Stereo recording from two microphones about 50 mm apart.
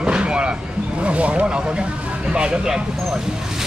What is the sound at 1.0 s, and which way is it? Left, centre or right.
Speech, right.